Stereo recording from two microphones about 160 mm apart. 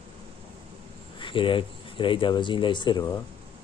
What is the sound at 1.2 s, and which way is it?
Speech, 30° left (ahead or behind).